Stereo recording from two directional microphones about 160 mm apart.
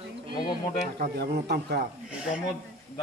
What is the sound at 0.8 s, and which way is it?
A man's voice, 75° right (ahead or behind).